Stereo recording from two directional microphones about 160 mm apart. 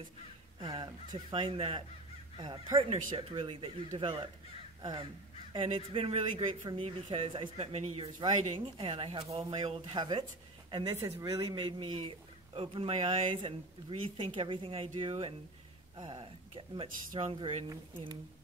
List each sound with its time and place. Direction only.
0.6 s speech: 25° right (ahead or behind)
5.5 s speech: 35° right (ahead or behind)